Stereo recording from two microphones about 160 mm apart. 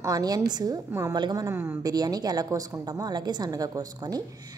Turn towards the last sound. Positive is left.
turn(degrees=-25)  # may be behind; listen again after turning